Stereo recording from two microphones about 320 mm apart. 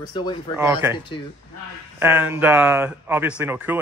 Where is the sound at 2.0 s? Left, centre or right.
Centre.